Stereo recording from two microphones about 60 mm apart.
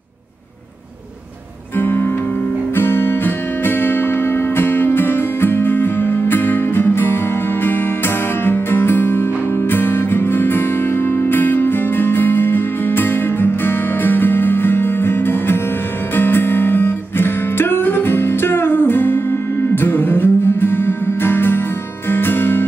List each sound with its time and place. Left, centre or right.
1.8 s guitar: left
2.7 s music: left
8.5 s music: left